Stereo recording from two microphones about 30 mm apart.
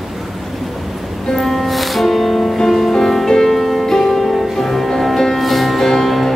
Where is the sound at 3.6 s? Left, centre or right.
Centre.